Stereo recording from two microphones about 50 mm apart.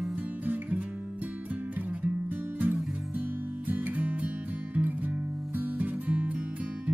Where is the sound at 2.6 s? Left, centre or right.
Right.